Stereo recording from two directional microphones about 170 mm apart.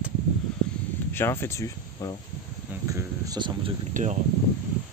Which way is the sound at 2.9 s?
25° right (ahead or behind).